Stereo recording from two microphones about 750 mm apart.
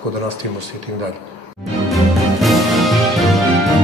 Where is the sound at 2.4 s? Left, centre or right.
Centre.